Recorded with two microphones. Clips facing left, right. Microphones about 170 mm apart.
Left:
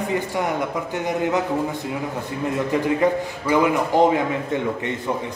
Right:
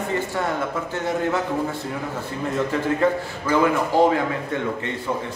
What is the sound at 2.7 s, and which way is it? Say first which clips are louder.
A man's voice: left 2 dB; 15° left (ahead or behind).